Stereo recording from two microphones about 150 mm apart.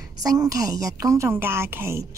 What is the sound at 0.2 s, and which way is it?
A woman's voice, 25° right (ahead or behind).